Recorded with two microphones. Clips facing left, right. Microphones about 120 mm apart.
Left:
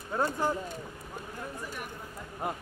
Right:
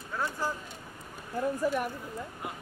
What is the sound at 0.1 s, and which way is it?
Speech, 25° left (ahead or behind).